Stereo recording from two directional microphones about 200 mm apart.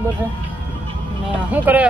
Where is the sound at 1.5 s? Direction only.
10° right (ahead or behind).